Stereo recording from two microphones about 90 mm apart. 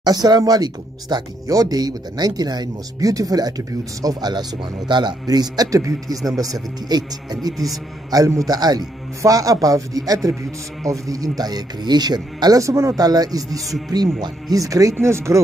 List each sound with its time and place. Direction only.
0.0 s speech: 50° right (ahead or behind)
7.5 s a man's voice: centre (ahead or behind)
8.1 s a man's voice: 40° right (ahead or behind)